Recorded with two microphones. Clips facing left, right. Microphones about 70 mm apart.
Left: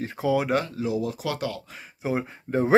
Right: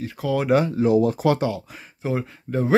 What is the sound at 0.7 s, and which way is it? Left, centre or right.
Speech, right.